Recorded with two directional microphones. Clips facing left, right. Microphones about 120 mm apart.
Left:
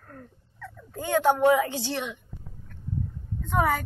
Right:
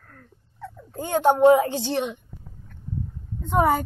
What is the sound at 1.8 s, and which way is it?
Speech, 25° right (ahead or behind).